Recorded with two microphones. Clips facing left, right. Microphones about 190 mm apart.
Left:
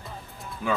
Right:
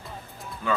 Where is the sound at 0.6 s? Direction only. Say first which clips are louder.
Even; 10° left (ahead or behind).